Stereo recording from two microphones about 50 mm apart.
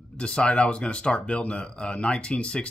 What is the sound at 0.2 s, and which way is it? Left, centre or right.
A man's voice, centre.